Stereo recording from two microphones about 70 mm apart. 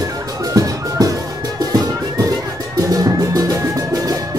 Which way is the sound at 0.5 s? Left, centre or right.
Right.